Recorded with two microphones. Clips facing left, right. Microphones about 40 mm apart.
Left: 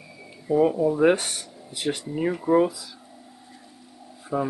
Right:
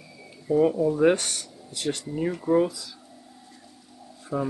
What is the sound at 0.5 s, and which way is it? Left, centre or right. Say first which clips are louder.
Speech: left 1 dB; centre.